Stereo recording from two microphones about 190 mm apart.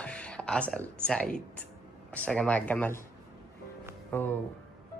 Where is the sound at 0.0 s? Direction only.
5° left (ahead or behind).